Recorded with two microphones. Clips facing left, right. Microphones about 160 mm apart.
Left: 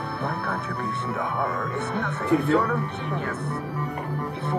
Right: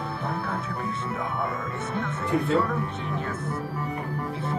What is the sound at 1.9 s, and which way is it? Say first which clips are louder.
Speech: left 3 dB; 65° left (ahead or behind).